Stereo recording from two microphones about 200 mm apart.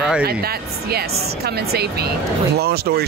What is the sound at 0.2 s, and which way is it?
Speech, 50° right (ahead or behind).